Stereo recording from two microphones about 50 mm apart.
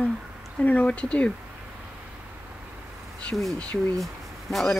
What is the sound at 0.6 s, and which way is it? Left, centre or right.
Speech, left.